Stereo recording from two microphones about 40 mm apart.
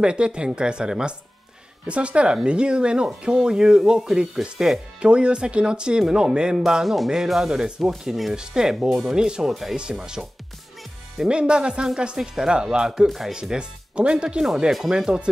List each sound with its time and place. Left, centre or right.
0.0 s speech: right
1.9 s speech: right
6.5 s speech: centre
9.5 s speech: centre
9.9 s speech: centre
11.2 s speech: right
14.7 s speech: centre